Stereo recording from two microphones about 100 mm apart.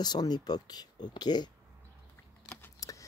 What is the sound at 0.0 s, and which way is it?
Speech, 45° left (ahead or behind).